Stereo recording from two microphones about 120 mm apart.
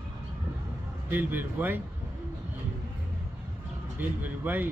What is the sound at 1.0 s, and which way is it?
Speech, 15° right (ahead or behind).